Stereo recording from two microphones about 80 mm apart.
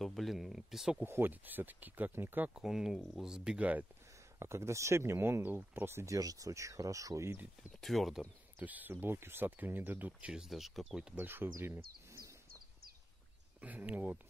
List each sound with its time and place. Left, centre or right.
0.0 s speech: centre
1.0 s speech: right
2.5 s speech: centre
4.4 s speech: right
6.1 s speech: right
7.8 s speech: centre
8.5 s speech: right
10.3 s speech: centre
11.1 s speech: right
13.6 s speech: centre